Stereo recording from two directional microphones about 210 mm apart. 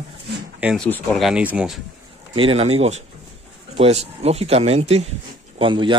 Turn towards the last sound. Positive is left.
turn(degrees=-25)  # may be behind; listen again after turning